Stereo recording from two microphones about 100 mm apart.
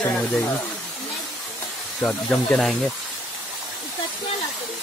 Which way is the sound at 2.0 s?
10° left (ahead or behind).